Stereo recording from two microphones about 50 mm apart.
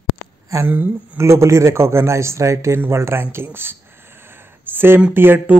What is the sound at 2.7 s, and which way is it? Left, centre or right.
Speech, right.